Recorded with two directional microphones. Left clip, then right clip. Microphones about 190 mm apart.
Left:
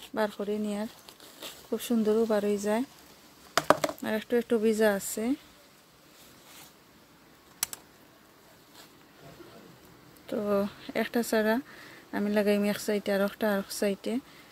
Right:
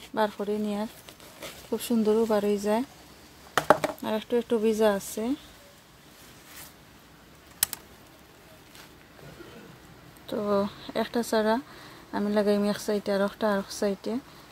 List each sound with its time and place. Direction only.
0.1 s speech: 15° left (ahead or behind)
3.5 s a sound: 40° left (ahead or behind)
4.0 s speech: 20° left (ahead or behind)
10.3 s speech: 20° left (ahead or behind)